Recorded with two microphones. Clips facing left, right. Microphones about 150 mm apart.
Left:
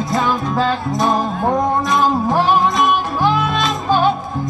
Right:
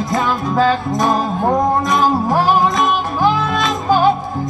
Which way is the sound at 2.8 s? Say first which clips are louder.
Left 1 dB; 20° right (ahead or behind).